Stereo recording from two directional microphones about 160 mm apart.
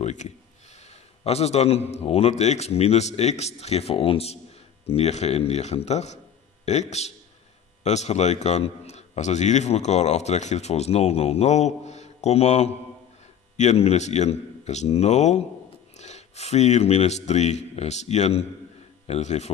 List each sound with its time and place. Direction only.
0.0 s a man's voice: 50° left (ahead or behind)